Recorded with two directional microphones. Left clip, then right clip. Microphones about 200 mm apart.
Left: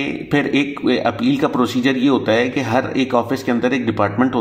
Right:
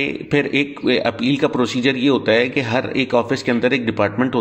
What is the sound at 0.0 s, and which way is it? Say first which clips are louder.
Speech: even; 25° right (ahead or behind).